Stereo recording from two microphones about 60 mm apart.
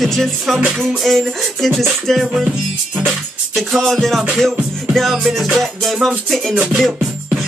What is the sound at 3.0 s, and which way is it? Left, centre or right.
Music, centre.